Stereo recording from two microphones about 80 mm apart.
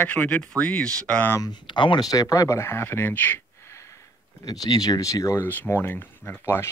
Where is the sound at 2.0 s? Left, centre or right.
Left.